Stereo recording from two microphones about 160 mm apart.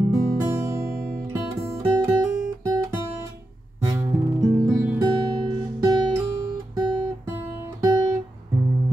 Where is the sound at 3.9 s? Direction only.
15° right (ahead or behind).